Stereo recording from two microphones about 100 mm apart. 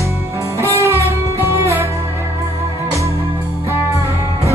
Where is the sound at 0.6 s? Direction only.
30° right (ahead or behind).